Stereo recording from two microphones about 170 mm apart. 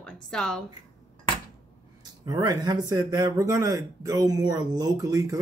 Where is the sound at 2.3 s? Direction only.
25° right (ahead or behind).